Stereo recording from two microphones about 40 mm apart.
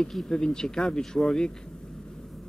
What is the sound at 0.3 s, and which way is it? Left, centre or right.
Speech, centre.